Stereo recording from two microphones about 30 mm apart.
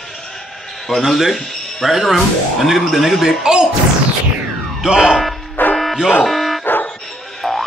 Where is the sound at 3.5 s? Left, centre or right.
Right.